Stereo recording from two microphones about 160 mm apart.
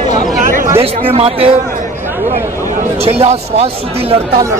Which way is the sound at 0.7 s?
35° right (ahead or behind).